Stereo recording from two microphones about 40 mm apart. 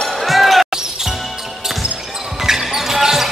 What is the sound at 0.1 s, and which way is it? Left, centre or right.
Basketball bounce, centre.